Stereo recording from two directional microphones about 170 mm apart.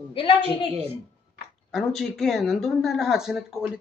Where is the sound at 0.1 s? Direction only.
30° left (ahead or behind).